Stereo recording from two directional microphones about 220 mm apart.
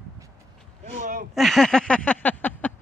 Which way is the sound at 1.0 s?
35° right (ahead or behind).